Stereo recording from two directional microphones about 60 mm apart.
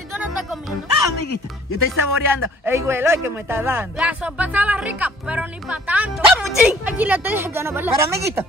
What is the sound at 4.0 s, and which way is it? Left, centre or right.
Speech, right.